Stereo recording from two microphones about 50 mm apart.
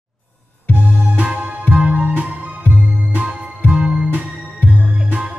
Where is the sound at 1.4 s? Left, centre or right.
Right.